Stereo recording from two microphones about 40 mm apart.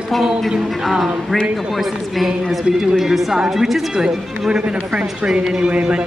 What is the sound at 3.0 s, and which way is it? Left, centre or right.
Speech, centre.